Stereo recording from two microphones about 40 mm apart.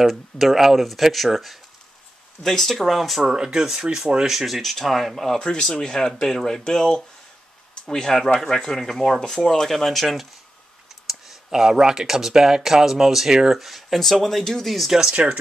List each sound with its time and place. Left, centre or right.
0.0 s speech: centre
3.3 s speech: centre
4.3 s speech: centre
14.9 s speech: centre